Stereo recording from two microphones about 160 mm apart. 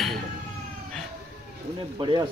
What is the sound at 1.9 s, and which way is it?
Speech, 30° right (ahead or behind).